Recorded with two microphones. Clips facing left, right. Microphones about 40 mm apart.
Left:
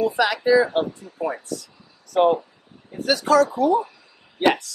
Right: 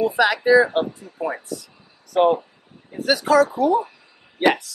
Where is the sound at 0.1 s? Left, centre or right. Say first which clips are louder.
Right 2 dB; centre.